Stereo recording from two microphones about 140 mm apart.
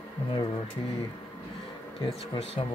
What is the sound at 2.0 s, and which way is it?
Speech, 45° left (ahead or behind).